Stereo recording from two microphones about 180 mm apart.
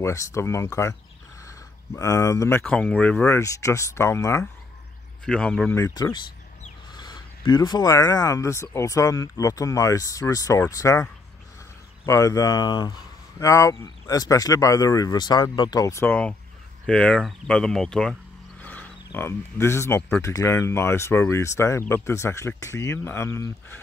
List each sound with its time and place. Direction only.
0.0 s speech: 15° left (ahead or behind)
2.0 s speech: 15° left (ahead or behind)
2.6 s speech: 5° left (ahead or behind)
5.2 s speech: 5° left (ahead or behind)
5.8 s speech: 15° left (ahead or behind)
12.1 s speech: 20° left (ahead or behind)
18.6 s roaring cats: 10° left (ahead or behind)
19.1 s speech: 15° left (ahead or behind)